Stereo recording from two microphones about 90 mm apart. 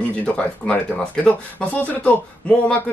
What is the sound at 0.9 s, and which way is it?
Speech, 15° left (ahead or behind).